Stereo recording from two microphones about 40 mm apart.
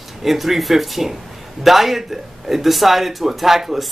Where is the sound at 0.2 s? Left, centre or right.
Centre.